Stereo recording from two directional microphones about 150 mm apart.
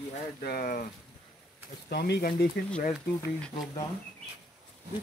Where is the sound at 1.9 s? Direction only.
90° left.